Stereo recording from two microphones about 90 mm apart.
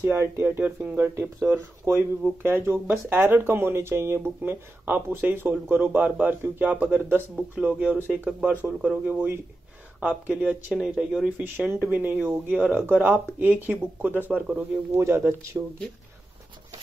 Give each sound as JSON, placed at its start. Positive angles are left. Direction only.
{"t": 0.0, "sound": "speech", "side_deg": -25}
{"t": 10.7, "sound": "speech", "side_deg": -5}
{"t": 11.2, "sound": "speech", "side_deg": -20}